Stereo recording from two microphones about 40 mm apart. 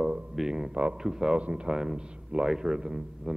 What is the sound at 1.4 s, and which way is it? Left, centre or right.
Speech, right.